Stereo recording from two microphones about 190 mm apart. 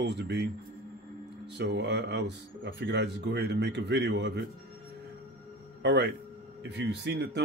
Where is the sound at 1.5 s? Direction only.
60° right (ahead or behind).